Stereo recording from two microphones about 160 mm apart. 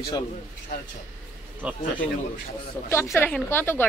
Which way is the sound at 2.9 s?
15° left (ahead or behind).